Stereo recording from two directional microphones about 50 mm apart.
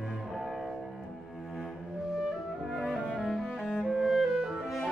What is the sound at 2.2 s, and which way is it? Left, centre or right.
Music, centre.